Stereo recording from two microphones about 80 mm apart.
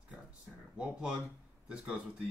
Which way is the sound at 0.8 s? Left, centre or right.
Centre.